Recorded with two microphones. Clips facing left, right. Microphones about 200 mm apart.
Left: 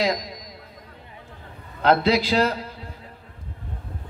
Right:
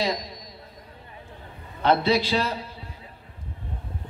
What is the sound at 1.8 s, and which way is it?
Speech, 90° left.